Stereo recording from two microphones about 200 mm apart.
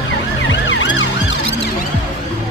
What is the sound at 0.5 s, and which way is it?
Ambulance, 65° left (ahead or behind).